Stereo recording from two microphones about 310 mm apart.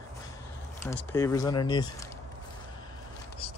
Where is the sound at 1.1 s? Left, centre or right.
Centre.